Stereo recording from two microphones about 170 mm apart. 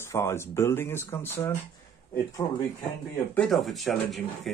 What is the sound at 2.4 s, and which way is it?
Speech, 25° left (ahead or behind).